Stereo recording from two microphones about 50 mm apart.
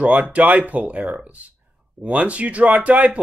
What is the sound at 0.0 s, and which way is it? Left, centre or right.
Speech, right.